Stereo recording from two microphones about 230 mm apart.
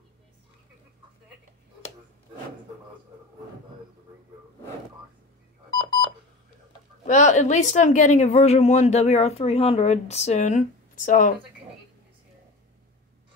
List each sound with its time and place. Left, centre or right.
5.7 s telephone dialing: centre
7.1 s speech: left